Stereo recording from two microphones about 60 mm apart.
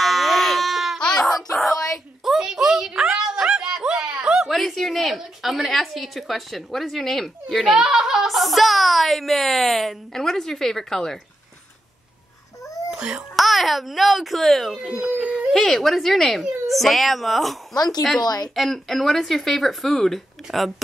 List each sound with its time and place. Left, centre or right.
0.0 s goat: centre
0.9 s a sound: centre
2.2 s a sound: centre
4.5 s a woman's voice: centre
12.9 s a child's voice: centre
13.4 s a woman's voice: centre
14.8 s speech: centre
15.5 s a woman's voice: centre
17.7 s speech: left
18.5 s a woman's voice: centre